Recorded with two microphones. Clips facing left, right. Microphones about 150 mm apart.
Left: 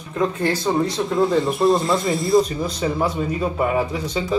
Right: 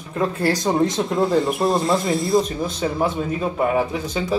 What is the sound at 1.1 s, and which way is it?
Speech, centre (ahead or behind).